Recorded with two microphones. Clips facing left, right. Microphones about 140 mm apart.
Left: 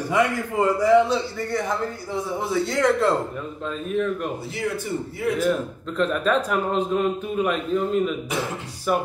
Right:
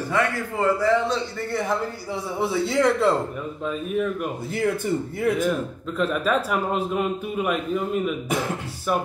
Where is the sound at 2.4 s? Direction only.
5° right (ahead or behind).